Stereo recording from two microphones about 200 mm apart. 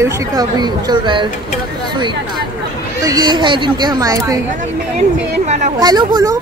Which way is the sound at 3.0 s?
20° right (ahead or behind).